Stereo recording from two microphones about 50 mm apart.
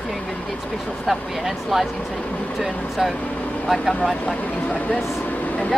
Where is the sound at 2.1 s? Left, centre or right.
Left.